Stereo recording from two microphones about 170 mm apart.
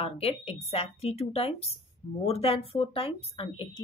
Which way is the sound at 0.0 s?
35° left (ahead or behind).